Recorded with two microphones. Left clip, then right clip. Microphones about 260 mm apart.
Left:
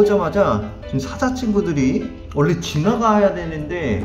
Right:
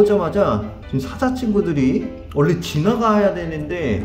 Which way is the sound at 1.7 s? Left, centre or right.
Right.